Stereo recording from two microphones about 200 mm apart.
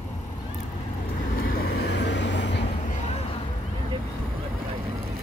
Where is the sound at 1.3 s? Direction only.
50° left (ahead or behind).